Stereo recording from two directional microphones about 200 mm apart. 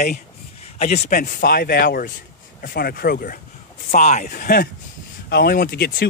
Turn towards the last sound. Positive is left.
turn(degrees=50)  # may be behind; listen again after turning